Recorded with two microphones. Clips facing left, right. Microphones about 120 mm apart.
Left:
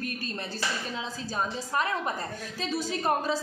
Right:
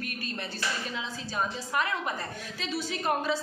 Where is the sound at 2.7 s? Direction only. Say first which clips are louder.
Left 2 dB; 40° left (ahead or behind).